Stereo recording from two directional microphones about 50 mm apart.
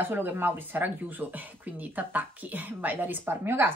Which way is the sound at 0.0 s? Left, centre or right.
Right.